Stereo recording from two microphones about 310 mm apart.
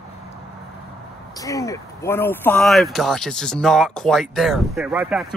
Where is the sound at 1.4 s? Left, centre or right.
Centre.